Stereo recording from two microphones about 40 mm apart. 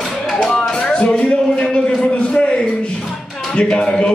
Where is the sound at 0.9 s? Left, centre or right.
Left.